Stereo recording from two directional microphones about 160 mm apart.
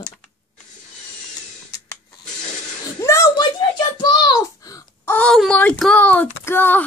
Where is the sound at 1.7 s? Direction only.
25° left (ahead or behind).